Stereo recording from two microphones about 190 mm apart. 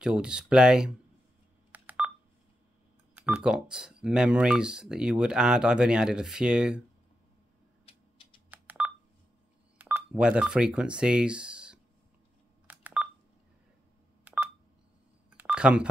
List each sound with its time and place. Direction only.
0.0 s speech: 5° right (ahead or behind)
1.7 s telephone dialing: 10° right (ahead or behind)
3.2 s speech: 5° right (ahead or behind)
7.9 s a sound: 30° left (ahead or behind)
8.5 s telephone dialing: 10° right (ahead or behind)
9.8 s speech: 10° right (ahead or behind)
12.6 s telephone dialing: 10° right (ahead or behind)
14.2 s telephone dialing: 10° right (ahead or behind)